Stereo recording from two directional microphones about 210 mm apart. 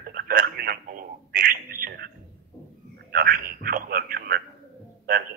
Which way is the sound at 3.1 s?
45° right (ahead or behind).